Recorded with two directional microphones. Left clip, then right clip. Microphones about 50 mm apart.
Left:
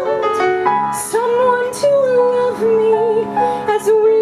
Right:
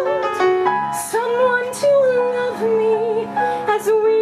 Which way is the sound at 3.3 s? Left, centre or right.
Centre.